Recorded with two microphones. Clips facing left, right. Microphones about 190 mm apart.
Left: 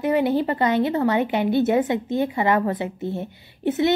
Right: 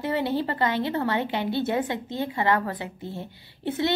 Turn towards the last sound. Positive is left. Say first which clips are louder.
# left 6 dB
turn(degrees=20)  # may be behind; listen again after turning